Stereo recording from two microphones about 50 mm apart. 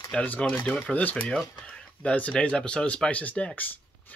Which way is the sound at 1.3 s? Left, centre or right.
Left.